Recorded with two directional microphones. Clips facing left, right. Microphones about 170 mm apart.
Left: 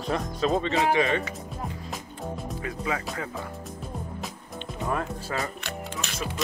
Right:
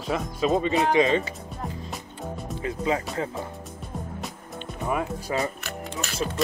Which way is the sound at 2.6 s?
25° right (ahead or behind).